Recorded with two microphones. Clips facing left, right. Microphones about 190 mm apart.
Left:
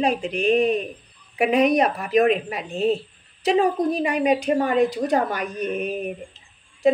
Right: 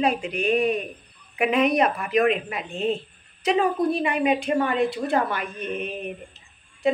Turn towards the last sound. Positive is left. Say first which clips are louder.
# left 4 dB
turn(degrees=40)  # may be behind; listen again after turning